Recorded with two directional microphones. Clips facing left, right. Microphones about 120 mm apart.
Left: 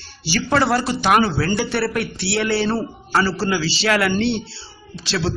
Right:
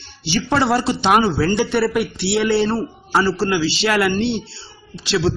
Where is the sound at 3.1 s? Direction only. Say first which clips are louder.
Right 2 dB; 15° right (ahead or behind).